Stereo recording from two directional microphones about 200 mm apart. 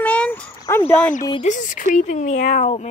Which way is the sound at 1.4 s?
40° left (ahead or behind).